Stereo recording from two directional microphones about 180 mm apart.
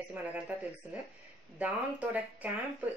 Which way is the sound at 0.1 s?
10° right (ahead or behind).